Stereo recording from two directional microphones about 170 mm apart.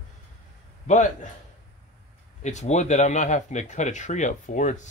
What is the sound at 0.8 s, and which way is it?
Speech, 45° left (ahead or behind).